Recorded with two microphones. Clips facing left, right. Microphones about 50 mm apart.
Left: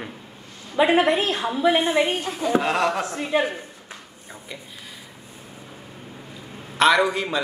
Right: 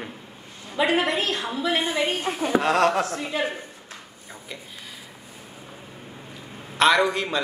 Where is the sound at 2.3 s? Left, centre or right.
Right.